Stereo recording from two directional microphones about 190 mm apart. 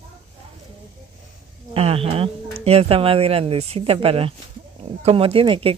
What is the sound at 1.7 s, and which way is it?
Speech, 30° right (ahead or behind).